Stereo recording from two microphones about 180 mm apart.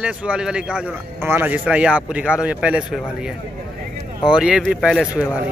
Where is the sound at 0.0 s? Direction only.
5° right (ahead or behind).